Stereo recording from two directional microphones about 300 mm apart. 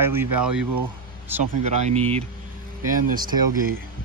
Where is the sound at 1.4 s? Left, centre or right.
Right.